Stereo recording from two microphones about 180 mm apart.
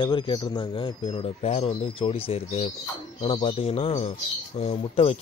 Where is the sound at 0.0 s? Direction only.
25° left (ahead or behind).